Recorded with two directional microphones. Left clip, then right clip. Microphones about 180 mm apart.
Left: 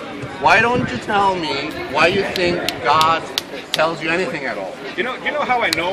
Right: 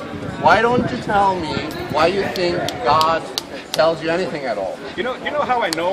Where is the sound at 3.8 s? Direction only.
25° right (ahead or behind).